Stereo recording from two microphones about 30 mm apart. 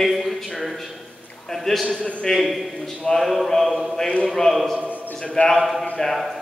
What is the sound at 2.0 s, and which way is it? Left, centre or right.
Speech, left.